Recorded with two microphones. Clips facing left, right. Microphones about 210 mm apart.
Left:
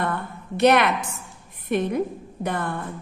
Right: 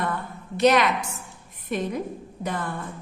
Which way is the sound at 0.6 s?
60° left (ahead or behind).